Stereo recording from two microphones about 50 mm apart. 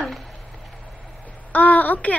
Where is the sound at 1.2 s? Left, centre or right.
Left.